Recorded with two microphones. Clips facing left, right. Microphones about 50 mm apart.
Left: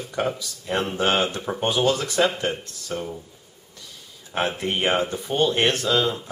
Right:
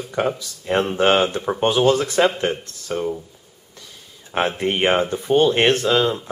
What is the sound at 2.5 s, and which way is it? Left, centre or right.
Speech, centre.